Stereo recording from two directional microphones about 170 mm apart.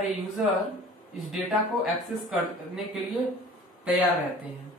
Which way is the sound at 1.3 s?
Centre (ahead or behind).